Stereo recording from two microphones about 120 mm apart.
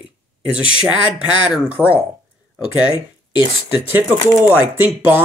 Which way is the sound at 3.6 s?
15° right (ahead or behind).